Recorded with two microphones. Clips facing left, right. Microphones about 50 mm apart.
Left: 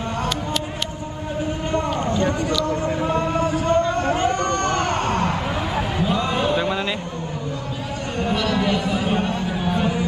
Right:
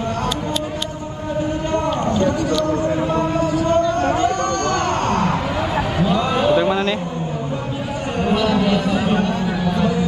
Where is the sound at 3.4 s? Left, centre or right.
Left.